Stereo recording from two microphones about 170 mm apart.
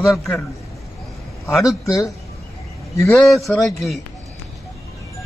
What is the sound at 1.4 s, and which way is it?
Speech, 15° left (ahead or behind).